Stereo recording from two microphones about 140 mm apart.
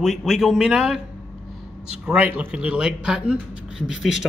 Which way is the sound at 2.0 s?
10° right (ahead or behind).